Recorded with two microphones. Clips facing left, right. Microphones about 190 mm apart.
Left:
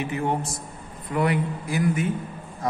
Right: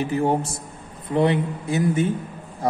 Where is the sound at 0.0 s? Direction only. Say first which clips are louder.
Right 5 dB; 35° right (ahead or behind).